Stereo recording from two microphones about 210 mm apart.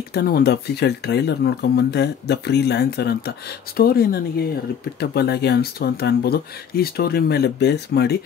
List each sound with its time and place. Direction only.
0.1 s speech: 45° left (ahead or behind)